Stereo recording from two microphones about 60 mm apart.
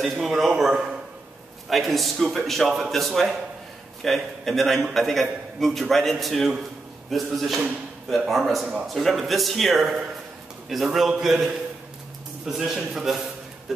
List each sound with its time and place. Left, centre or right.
0.0 s a man's voice: centre
0.7 s a man's voice: centre
1.7 s a man's voice: centre
13.7 s a sound: centre